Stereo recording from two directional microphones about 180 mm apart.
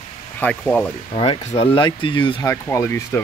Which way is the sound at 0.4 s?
5° left (ahead or behind).